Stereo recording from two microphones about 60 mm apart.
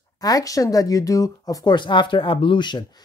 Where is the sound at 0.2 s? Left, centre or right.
Left.